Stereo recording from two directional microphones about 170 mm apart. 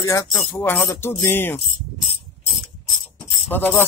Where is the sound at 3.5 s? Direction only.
10° left (ahead or behind).